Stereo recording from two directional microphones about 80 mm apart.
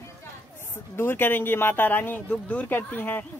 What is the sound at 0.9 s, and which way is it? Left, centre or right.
Speech, left.